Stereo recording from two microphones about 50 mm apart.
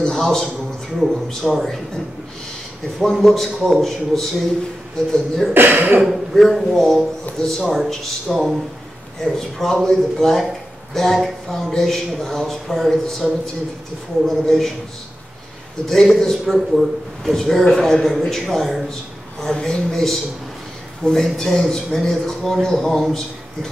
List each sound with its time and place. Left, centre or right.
0.0 s a sound: centre
0.9 s a man's voice: centre
3.0 s a man's voice: centre
5.5 s speech: right
6.3 s a man's voice: centre
9.6 s a man's voice: centre
14.4 s a man's voice: centre
15.9 s a man's voice: centre
19.5 s a man's voice: centre